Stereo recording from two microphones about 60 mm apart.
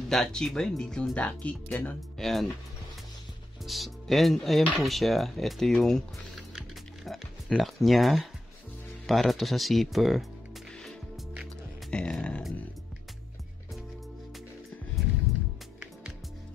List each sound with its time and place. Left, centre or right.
0.1 s speech: centre
1.1 s speech: left
2.1 s speech: centre
3.6 s speech: centre
7.1 s speech: centre
11.9 s speech: centre